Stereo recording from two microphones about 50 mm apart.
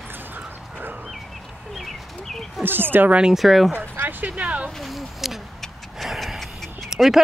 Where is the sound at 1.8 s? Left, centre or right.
Centre.